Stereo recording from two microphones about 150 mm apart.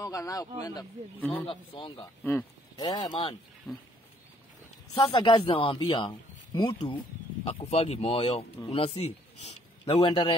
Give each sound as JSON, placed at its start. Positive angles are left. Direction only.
{"t": 0.0, "sound": "speech", "side_deg": 25}
{"t": 1.3, "sound": "speech", "side_deg": 35}
{"t": 3.7, "sound": "pig", "side_deg": 0}
{"t": 5.0, "sound": "speech", "side_deg": 35}
{"t": 7.4, "sound": "a man's voice", "side_deg": 45}